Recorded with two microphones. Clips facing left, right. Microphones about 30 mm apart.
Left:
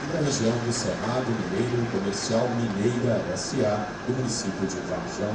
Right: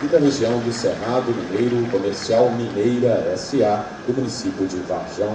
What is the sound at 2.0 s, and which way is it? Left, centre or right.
A man's voice, right.